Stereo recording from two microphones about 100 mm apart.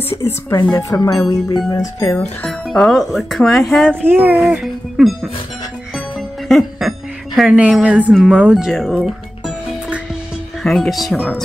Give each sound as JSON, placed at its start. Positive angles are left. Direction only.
{"t": 0.1, "sound": "speech", "side_deg": 30}
{"t": 0.6, "sound": "speech", "side_deg": 40}
{"t": 2.1, "sound": "speech", "side_deg": 10}
{"t": 4.0, "sound": "speech", "side_deg": -20}
{"t": 4.4, "sound": "speech", "side_deg": -5}
{"t": 7.3, "sound": "speech", "side_deg": -10}
{"t": 10.6, "sound": "speech", "side_deg": 5}